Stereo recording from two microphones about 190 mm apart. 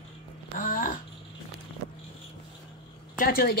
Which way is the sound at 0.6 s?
45° left (ahead or behind).